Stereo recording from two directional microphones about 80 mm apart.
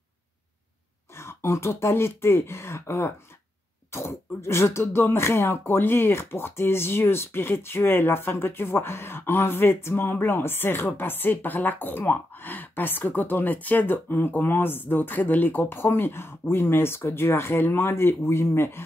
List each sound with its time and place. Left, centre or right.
1.1 s a woman's voice: left